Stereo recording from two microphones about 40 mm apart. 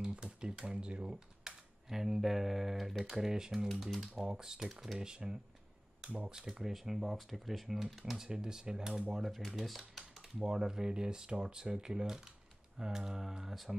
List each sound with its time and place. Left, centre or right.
0.2 s speech: right
1.4 s speech: centre
4.2 s speech: centre
6.0 s speech: right
6.3 s speech: centre
6.7 s speech: centre
9.1 s speech: centre
10.4 s speech: centre